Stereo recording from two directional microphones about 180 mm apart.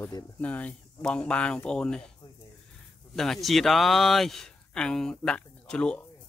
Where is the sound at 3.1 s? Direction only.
Centre (ahead or behind).